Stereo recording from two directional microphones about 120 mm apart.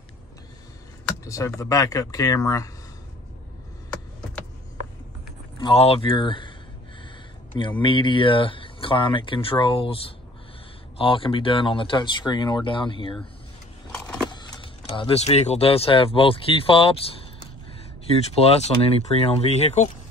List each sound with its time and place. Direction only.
1.2 s speech: 25° left (ahead or behind)
5.6 s speech: 50° left (ahead or behind)
7.8 s speech: 40° left (ahead or behind)
11.0 s speech: 45° left (ahead or behind)
14.3 s vehicle: 40° left (ahead or behind)
15.1 s speech: 65° left (ahead or behind)
18.3 s speech: 55° left (ahead or behind)